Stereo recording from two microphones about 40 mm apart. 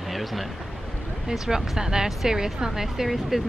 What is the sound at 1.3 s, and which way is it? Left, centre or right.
Speech, centre.